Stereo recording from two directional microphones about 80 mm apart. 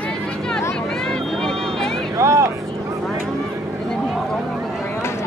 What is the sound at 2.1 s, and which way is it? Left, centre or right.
Vehicle, right.